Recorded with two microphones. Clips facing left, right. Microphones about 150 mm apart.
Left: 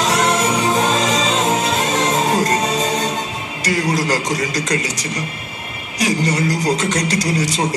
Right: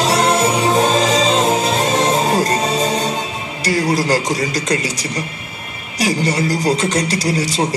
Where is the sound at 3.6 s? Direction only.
30° right (ahead or behind).